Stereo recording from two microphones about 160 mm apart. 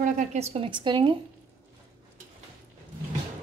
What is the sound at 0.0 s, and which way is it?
A woman's voice, 50° right (ahead or behind).